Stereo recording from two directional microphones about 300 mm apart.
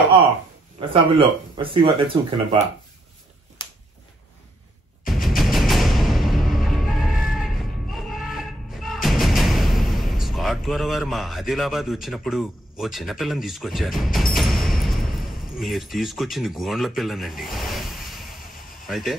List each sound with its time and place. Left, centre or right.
0.7 s speech: centre
3.6 s a sound: centre
5.1 s music: centre
10.2 s speech: centre